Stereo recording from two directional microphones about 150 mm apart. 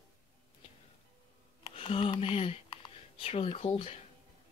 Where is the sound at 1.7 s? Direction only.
35° left (ahead or behind).